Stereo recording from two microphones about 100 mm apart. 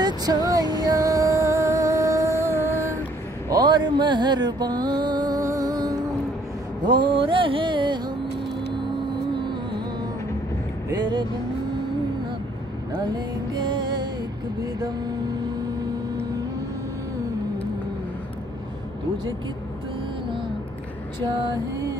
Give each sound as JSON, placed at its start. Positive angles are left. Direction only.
{"t": 0.0, "sound": "music", "side_deg": -40}
{"t": 3.4, "sound": "music", "side_deg": -40}
{"t": 6.8, "sound": "music", "side_deg": -50}
{"t": 11.0, "sound": "speech", "side_deg": -50}
{"t": 13.0, "sound": "music", "side_deg": -45}
{"t": 21.2, "sound": "female singing", "side_deg": -45}